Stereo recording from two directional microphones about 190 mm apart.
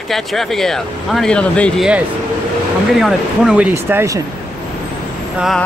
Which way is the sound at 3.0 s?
Centre (ahead or behind).